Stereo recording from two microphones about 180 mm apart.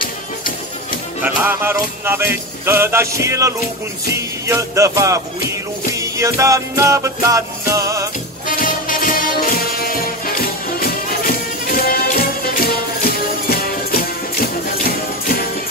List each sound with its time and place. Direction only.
1.2 s music: 10° right (ahead or behind)
8.5 s music: 50° left (ahead or behind)